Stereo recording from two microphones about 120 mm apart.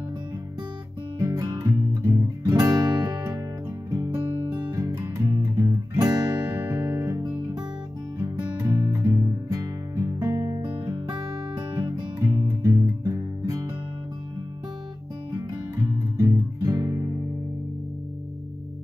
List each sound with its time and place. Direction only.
1.2 s music: 30° right (ahead or behind)
6.8 s music: 25° right (ahead or behind)
8.5 s music: 25° right (ahead or behind)
12.3 s music: 25° right (ahead or behind)
16.2 s guitar: 30° right (ahead or behind)